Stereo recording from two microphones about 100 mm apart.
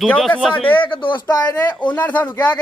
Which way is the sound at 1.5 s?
20° left (ahead or behind).